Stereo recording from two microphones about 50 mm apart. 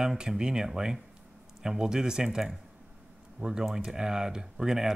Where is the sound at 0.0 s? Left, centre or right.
Centre.